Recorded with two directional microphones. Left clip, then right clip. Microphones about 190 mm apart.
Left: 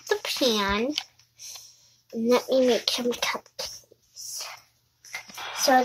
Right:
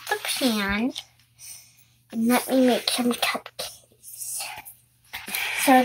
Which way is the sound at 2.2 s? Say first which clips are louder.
Even; 5° left (ahead or behind).